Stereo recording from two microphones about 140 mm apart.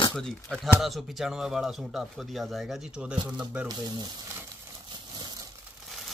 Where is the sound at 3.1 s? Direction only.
35° right (ahead or behind).